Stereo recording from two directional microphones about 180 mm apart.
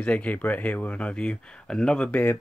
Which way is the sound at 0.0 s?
5° left (ahead or behind).